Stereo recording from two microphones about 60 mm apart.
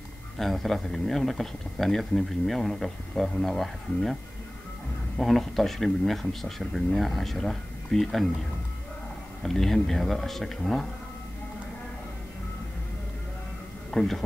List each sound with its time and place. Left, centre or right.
0.4 s speech: centre
9.4 s speech: centre
13.9 s speech: centre